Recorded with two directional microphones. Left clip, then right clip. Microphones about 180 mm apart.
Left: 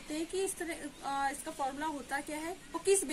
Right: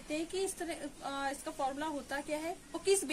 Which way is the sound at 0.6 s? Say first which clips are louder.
Even; 20° right (ahead or behind).